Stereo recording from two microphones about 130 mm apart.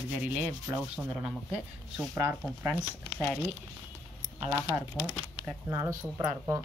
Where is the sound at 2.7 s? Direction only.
5° right (ahead or behind).